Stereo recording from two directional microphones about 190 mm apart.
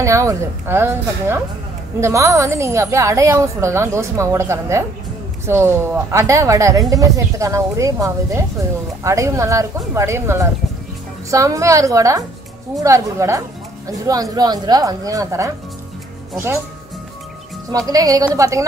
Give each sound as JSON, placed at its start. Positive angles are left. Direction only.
{"t": 0.0, "sound": "a woman's voice", "side_deg": -15}
{"t": 17.6, "sound": "speech", "side_deg": -20}